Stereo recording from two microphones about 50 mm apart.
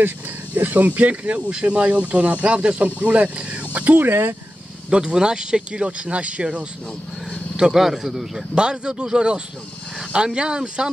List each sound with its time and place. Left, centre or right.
0.6 s speech: right
4.1 s speech: right
4.8 s a man's voice: centre
8.5 s speech: centre